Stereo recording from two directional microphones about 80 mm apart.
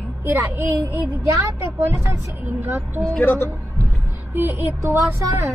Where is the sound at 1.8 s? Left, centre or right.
Right.